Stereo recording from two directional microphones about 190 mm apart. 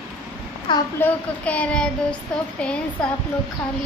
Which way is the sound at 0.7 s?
25° left (ahead or behind).